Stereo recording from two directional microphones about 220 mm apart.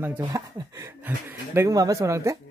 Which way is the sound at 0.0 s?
15° right (ahead or behind).